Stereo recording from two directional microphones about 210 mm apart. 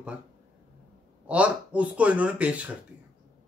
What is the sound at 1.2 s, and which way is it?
A man's voice, 5° right (ahead or behind).